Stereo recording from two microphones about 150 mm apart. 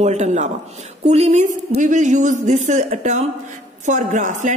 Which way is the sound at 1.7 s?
55° right (ahead or behind).